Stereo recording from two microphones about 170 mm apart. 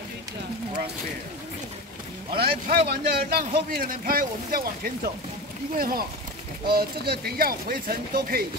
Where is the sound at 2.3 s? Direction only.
65° right (ahead or behind).